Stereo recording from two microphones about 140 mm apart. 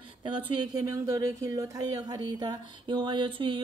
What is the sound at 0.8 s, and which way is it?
Speech, 25° right (ahead or behind).